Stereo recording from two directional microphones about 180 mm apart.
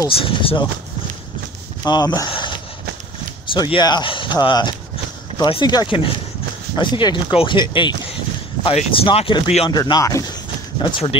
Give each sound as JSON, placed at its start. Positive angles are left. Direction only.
{"t": 0.1, "sound": "speech", "side_deg": 30}
{"t": 1.9, "sound": "speech", "side_deg": 25}
{"t": 3.5, "sound": "speech", "side_deg": 25}
{"t": 9.7, "sound": "speech", "side_deg": 20}
{"t": 10.8, "sound": "speech", "side_deg": 30}